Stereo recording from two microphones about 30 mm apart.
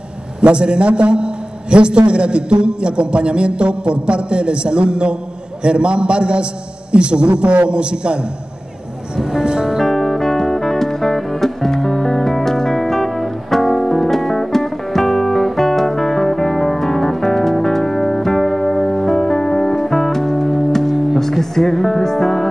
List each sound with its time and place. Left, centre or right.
0.4 s a man's voice: right
9.8 s music: centre
21.2 s music: centre